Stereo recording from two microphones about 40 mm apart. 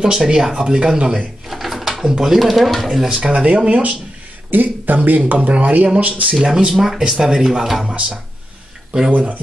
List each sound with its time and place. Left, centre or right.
0.0 s speech: centre
1.5 s a sound: centre
2.0 s speech: centre
2.3 s speech: centre
3.1 s speech: right
4.5 s speech: right
6.3 s speech: centre
9.1 s speech: right